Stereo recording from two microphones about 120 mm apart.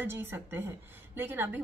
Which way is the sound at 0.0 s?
20° right (ahead or behind).